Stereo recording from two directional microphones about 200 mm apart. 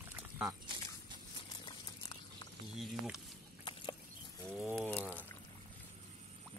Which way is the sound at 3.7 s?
25° left (ahead or behind).